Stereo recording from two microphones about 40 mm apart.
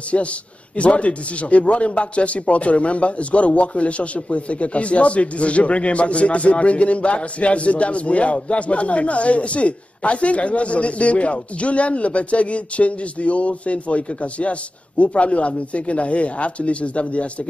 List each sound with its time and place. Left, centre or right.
0.1 s a man's voice: left